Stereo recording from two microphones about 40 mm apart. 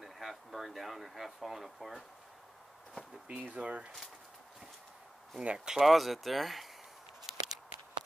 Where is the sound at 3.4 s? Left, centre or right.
Right.